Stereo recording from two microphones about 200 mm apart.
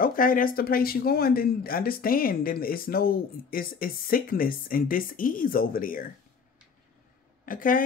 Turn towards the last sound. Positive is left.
turn(degrees=45)  # may be behind; listen again after turning